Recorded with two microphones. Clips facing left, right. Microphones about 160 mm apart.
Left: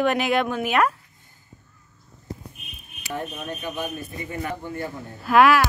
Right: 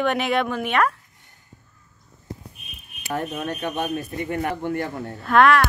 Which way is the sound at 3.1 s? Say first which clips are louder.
Right 4 dB; 80° right.